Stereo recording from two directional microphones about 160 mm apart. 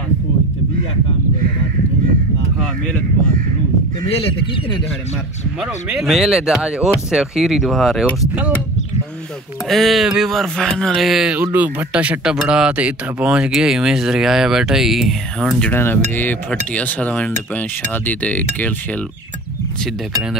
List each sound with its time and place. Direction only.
4.3 s speech: 35° left (ahead or behind)
5.6 s speech: 5° right (ahead or behind)
9.7 s speech: centre (ahead or behind)
15.7 s cutlery: 15° left (ahead or behind)